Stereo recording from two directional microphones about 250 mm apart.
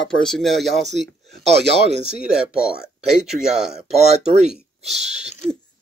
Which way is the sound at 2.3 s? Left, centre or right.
Centre.